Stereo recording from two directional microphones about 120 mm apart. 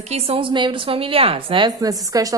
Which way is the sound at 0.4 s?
45° right (ahead or behind).